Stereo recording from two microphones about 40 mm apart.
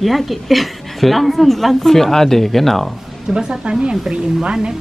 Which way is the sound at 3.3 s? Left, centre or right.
Centre.